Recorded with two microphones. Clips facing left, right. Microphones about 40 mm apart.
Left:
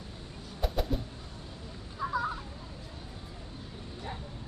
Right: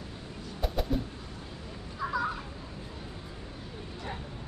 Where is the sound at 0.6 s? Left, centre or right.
Centre.